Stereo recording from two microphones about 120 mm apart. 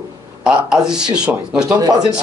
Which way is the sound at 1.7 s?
35° right (ahead or behind).